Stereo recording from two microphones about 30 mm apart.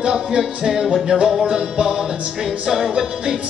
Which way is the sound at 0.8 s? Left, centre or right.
Centre.